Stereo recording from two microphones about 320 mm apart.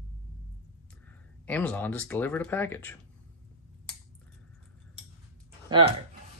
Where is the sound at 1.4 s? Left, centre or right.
Centre.